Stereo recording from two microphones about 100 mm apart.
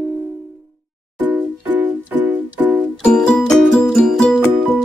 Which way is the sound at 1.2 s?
20° right (ahead or behind).